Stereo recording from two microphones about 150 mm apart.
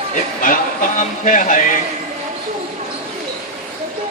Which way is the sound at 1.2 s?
60° left (ahead or behind).